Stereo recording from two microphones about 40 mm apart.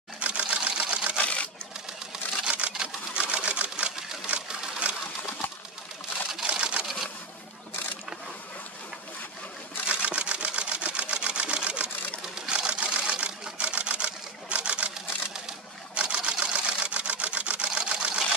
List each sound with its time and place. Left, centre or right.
0.2 s camera: right
1.1 s a sound: left
2.4 s camera: right
6.4 s sewing machine: right
10.0 s camera: right
15.9 s camera: right